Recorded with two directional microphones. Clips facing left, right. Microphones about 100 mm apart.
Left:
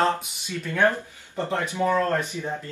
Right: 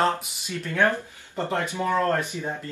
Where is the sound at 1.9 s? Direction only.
20° right (ahead or behind).